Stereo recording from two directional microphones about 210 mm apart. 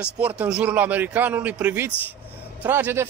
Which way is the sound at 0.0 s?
5° right (ahead or behind).